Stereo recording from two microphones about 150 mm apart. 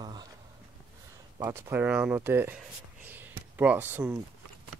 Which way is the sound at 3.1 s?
10° right (ahead or behind).